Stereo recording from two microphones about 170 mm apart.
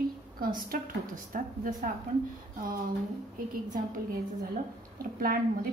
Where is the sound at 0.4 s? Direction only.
55° right (ahead or behind).